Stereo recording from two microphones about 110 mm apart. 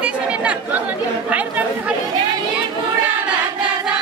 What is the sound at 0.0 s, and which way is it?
Chatter, 10° right (ahead or behind).